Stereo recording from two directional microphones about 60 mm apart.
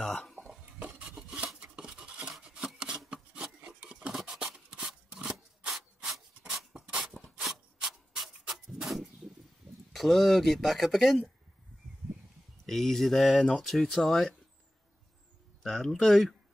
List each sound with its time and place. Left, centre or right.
0.0 s stir: centre
0.7 s rub: right
1.9 s a sound: centre
2.4 s rub: centre
3.6 s scissors: centre
4.1 s scissors: centre
7.4 s a sound: centre
8.1 s clock: centre
8.8 s a sound: centre
9.9 s speech: centre
12.6 s speech: centre
15.6 s speech: centre